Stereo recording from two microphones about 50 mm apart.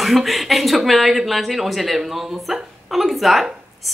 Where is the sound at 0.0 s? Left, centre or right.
Centre.